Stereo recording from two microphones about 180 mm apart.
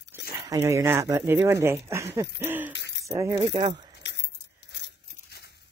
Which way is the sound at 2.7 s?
75° left (ahead or behind).